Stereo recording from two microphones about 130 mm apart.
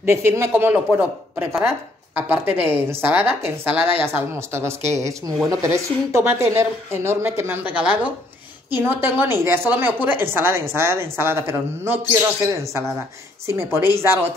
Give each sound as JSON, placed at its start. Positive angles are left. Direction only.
{"t": 0.0, "sound": "a woman's voice", "side_deg": -20}